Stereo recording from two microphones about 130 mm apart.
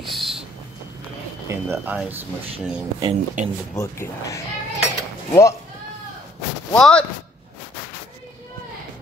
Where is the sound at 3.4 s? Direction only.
75° right (ahead or behind).